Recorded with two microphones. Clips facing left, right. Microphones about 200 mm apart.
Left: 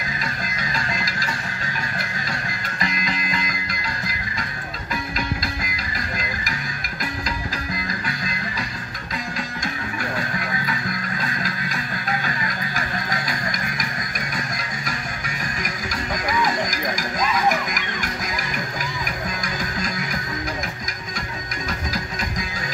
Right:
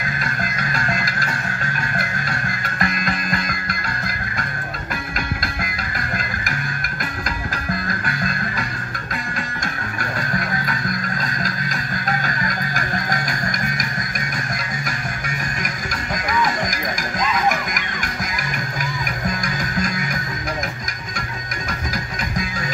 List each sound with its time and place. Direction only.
0.2 s music: 55° right (ahead or behind)
7.7 s music: 50° right (ahead or behind)
11.4 s music: 45° right (ahead or behind)